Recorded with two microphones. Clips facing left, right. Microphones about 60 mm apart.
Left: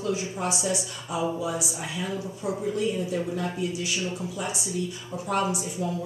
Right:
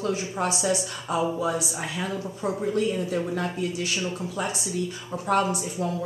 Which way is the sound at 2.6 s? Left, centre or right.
Right.